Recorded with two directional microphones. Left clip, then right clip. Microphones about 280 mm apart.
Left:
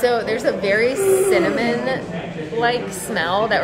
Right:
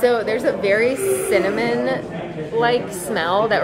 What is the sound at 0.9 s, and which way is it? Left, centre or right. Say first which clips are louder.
Speech: left 4 dB; centre.